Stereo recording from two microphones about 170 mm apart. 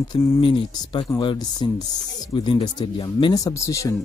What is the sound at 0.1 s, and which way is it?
Speech, 30° left (ahead or behind).